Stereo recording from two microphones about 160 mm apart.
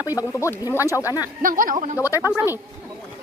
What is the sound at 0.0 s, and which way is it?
Speech, 20° left (ahead or behind).